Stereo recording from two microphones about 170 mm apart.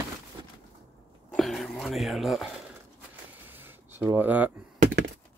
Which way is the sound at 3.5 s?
10° right (ahead or behind).